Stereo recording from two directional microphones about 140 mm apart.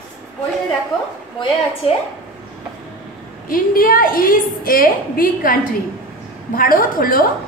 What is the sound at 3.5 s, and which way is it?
A woman's voice, 90° left.